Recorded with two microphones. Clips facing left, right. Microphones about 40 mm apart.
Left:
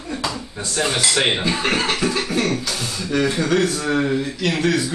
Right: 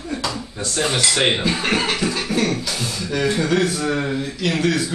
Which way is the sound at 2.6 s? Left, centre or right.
Centre.